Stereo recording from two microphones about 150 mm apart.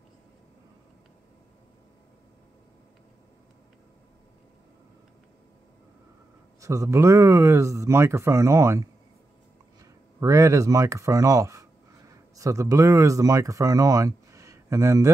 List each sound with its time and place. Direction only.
6.6 s speech: 20° right (ahead or behind)
10.2 s speech: 20° right (ahead or behind)